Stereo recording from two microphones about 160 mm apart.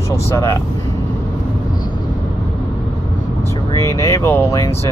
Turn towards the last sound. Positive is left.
turn(degrees=15)  # may be behind; listen again after turning